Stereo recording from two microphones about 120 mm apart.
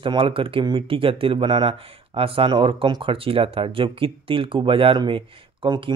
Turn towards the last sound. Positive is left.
turn(degrees=-45)  # may be behind; listen again after turning